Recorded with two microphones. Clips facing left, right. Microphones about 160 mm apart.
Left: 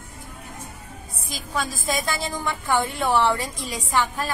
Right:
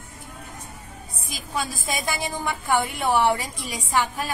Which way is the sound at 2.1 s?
10° right (ahead or behind).